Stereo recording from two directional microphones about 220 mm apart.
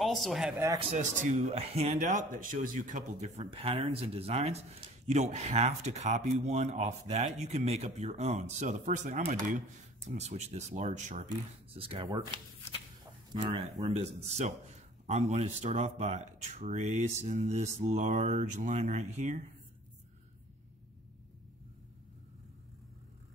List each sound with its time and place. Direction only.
0.0 s speech: centre (ahead or behind)
0.9 s a man's voice: 35° right (ahead or behind)
13.5 s a man's voice: 25° right (ahead or behind)